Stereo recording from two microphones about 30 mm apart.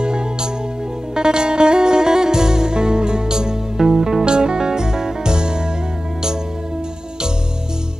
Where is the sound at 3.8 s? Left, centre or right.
Centre.